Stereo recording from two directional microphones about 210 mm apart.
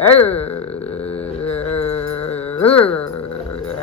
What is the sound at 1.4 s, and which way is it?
Music, 5° left (ahead or behind).